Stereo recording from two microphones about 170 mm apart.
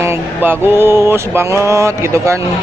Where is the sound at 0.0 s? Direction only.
15° right (ahead or behind).